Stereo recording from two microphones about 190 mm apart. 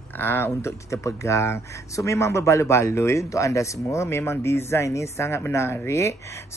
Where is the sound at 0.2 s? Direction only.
10° left (ahead or behind).